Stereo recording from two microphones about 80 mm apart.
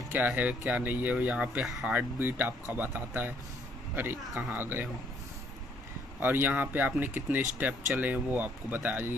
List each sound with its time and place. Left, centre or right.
0.1 s speech: centre
1.6 s speech: centre
1.9 s a man's voice: right
6.1 s speech: right